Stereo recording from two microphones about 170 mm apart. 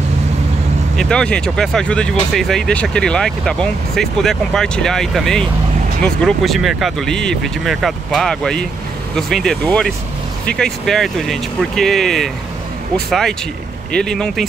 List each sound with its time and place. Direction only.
0.9 s speech: 5° left (ahead or behind)